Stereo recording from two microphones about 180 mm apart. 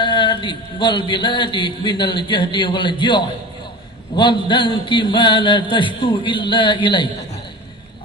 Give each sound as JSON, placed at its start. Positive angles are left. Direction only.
{"t": 0.0, "sound": "a man's voice", "side_deg": 25}